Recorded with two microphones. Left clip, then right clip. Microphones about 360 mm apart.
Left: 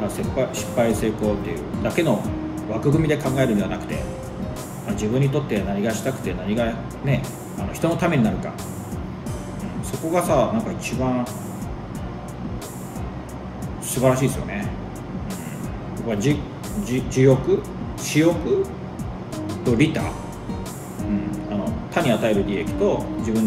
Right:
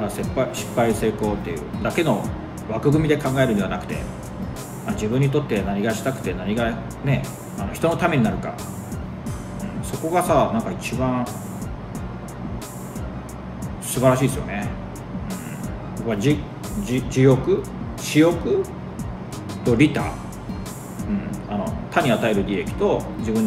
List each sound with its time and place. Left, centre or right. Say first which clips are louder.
0.0 s speech: even; centre
10.0 s speech: right 1 dB; centre
14.0 s speech: right 1 dB; centre
16.0 s speech: right 1 dB; centre
21.0 s music: left 3 dB; centre